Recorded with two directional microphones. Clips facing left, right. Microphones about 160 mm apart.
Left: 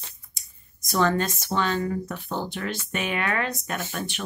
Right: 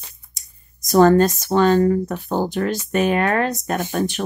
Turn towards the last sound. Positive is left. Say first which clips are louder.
# right 9 dB
turn(degrees=-40)  # may be behind; listen again after turning